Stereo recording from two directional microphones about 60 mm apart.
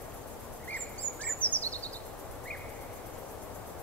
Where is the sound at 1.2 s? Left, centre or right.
Left.